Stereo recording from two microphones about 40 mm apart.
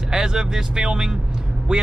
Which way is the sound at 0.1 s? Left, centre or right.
Centre.